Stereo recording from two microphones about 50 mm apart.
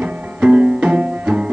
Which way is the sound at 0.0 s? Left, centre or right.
Right.